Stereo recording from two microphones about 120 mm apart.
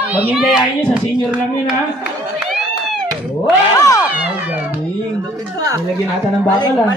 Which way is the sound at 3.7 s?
30° left (ahead or behind).